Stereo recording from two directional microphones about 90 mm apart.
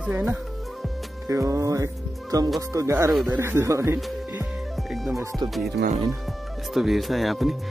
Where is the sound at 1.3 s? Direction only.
35° right (ahead or behind).